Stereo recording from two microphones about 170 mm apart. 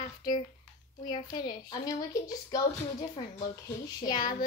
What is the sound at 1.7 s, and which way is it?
Speech, 20° left (ahead or behind).